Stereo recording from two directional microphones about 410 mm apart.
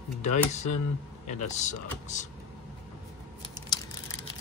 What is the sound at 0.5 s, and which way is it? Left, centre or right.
Speech, centre.